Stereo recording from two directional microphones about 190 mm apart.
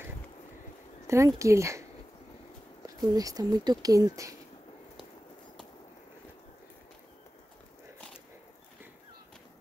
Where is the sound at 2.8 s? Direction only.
20° right (ahead or behind).